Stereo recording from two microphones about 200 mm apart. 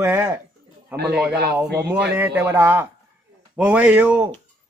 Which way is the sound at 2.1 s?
10° right (ahead or behind).